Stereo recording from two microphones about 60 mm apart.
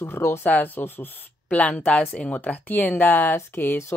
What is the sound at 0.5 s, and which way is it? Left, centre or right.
A woman's voice, left.